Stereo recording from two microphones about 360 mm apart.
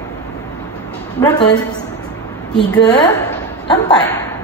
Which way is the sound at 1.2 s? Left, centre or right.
Centre.